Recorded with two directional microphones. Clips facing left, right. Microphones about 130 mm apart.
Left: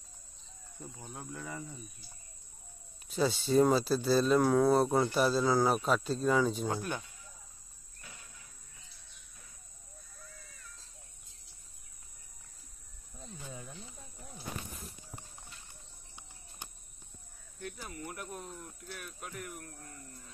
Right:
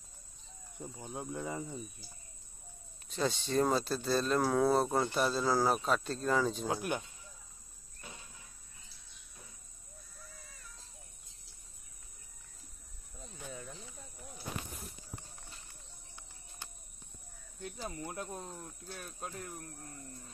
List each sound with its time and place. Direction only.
0.7 s cricket: 15° right (ahead or behind)
3.1 s speech: 5° left (ahead or behind)
6.8 s speech: 15° right (ahead or behind)
8.0 s cricket: 25° right (ahead or behind)
16.2 s cricket: 20° left (ahead or behind)
17.6 s cricket: 25° right (ahead or behind)